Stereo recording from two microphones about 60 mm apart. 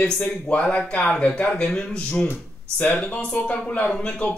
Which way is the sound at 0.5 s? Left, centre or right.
Left.